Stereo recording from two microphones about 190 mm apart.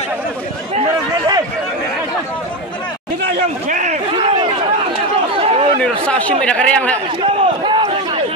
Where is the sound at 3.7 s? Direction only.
40° right (ahead or behind).